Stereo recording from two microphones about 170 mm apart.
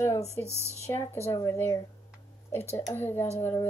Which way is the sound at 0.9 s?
15° left (ahead or behind).